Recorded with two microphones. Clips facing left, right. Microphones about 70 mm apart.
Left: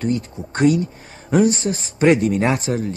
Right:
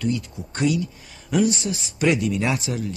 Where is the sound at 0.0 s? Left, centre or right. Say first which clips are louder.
Left 3 dB; left.